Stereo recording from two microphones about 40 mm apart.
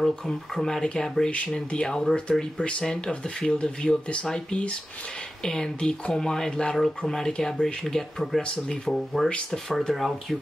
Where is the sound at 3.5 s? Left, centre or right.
Left; by 8.4 s centre.